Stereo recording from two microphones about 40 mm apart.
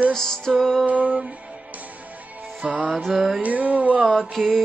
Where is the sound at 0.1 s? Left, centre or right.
Centre.